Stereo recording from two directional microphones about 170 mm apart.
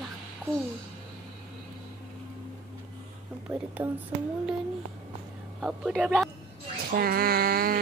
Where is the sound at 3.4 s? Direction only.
10° right (ahead or behind).